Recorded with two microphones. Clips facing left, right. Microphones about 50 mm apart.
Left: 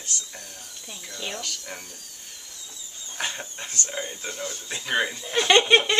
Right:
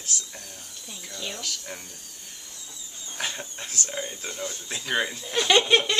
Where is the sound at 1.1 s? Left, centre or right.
Centre.